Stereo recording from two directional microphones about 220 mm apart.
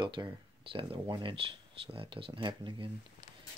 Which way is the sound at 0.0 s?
20° right (ahead or behind).